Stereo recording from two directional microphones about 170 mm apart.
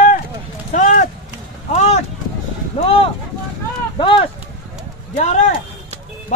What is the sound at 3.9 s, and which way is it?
Clip-clop, 30° left (ahead or behind).